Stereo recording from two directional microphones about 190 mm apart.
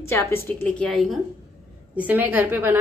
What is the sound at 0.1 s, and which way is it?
A woman's voice, 10° left (ahead or behind).